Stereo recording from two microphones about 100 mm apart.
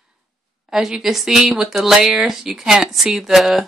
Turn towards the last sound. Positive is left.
turn(degrees=0)  # may be behind; listen again after turning